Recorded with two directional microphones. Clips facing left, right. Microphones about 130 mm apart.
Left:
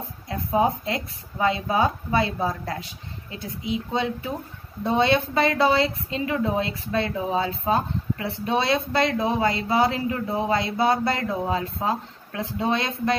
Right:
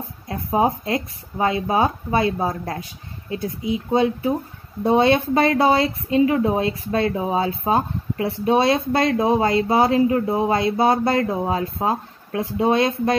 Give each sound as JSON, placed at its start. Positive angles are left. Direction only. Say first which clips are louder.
{"t": 0.3, "sound": "a woman's voice", "louder": "right 2 dB", "side_deg": -30}
{"t": 2.3, "sound": "speech", "louder": "right 3 dB", "side_deg": -40}
{"t": 3.7, "sound": "a woman's voice", "louder": "right 6 dB", "side_deg": -25}